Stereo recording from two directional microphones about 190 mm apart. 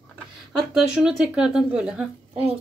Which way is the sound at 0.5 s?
5° right (ahead or behind).